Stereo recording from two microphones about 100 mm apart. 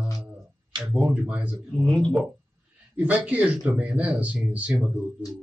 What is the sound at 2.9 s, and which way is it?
Speech, 15° right (ahead or behind).